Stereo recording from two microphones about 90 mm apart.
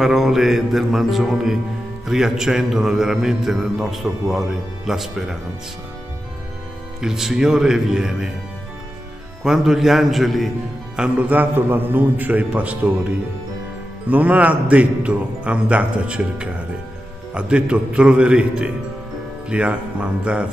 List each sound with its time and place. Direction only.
0.0 s a man's voice: 5° right (ahead or behind)
7.0 s a man's voice: 5° right (ahead or behind)
9.4 s a man's voice: 5° right (ahead or behind)
11.0 s a man's voice: 15° right (ahead or behind)
14.0 s a man's voice: 15° right (ahead or behind)